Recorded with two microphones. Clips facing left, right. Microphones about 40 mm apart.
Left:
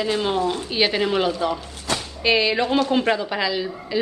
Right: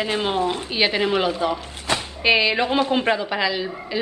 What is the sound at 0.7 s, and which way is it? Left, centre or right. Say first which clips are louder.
A woman's voice: right 1 dB; centre.